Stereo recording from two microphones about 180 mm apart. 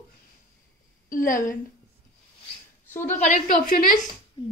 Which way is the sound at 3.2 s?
45° left (ahead or behind).